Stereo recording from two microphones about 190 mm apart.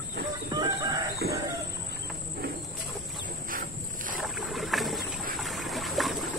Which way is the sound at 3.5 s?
45° right (ahead or behind).